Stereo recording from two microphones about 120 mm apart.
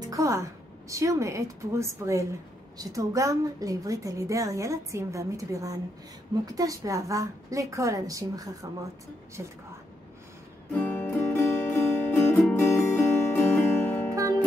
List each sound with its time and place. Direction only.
0.0 s a woman's voice: 25° right (ahead or behind)
10.7 s music: 15° left (ahead or behind)